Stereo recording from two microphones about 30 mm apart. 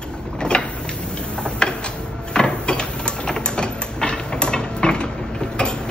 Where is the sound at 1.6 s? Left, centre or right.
Left.